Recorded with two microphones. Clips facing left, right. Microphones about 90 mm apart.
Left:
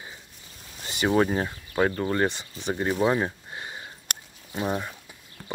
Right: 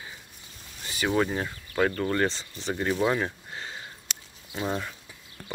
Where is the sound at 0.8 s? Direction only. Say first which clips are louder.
Left 3 dB; 25° left (ahead or behind).